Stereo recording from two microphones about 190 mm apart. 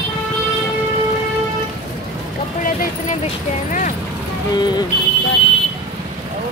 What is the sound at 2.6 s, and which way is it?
Speech, 40° left (ahead or behind).